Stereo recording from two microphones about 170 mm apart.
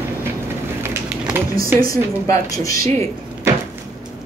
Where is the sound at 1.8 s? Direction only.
20° left (ahead or behind).